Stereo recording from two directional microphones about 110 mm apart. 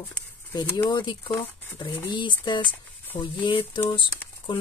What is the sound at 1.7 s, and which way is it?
Speech, 40° left (ahead or behind).